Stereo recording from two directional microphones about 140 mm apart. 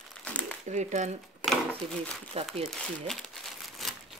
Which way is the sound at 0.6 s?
60° right (ahead or behind).